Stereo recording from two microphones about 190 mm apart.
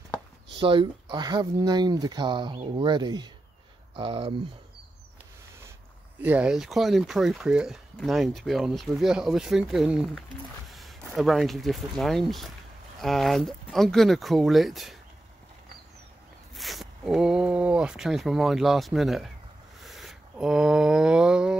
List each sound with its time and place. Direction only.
0.6 s speech: 25° right (ahead or behind)
6.2 s speech: 5° right (ahead or behind)
16.5 s speech: centre (ahead or behind)
19.8 s a sound: centre (ahead or behind)